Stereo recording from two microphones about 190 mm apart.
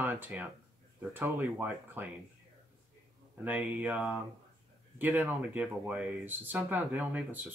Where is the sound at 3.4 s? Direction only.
10° right (ahead or behind).